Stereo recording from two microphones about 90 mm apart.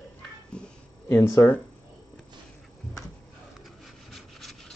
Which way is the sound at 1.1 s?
30° left (ahead or behind).